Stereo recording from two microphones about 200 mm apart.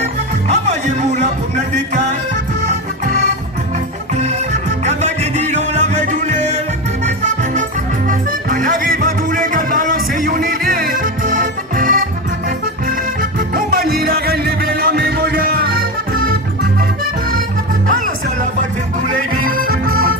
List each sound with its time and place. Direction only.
0.5 s speech: 35° right (ahead or behind)
4.8 s music: 35° right (ahead or behind)
8.1 s music: 40° right (ahead or behind)
13.6 s music: 45° right (ahead or behind)
19.0 s music: 45° right (ahead or behind)